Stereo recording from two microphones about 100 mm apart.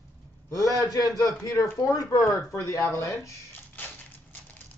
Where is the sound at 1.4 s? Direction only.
35° left (ahead or behind).